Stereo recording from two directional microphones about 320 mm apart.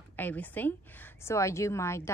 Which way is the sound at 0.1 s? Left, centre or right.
Centre.